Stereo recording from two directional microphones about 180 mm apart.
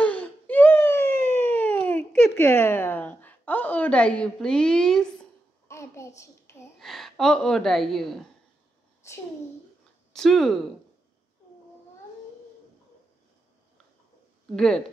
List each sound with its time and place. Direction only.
0.0 s a sound: 10° left (ahead or behind)
2.3 s a woman's voice: 15° left (ahead or behind)
5.7 s a sound: 15° left (ahead or behind)
6.8 s a woman's voice: centre (ahead or behind)
9.0 s a child's voice: 15° left (ahead or behind)
10.1 s speech: centre (ahead or behind)
14.5 s speech: 5° left (ahead or behind)